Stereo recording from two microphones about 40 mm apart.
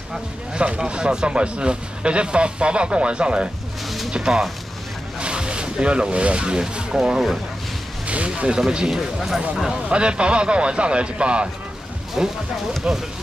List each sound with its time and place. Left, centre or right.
0.6 s speech: right
8.1 s speech: right
8.5 s speech: centre
8.9 s speech: centre
9.8 s speech: right